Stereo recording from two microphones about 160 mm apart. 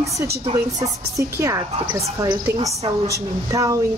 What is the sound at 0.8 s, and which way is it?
A woman's voice, 20° right (ahead or behind).